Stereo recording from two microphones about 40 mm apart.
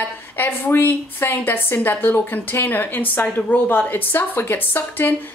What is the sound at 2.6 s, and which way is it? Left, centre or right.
A woman's voice, left.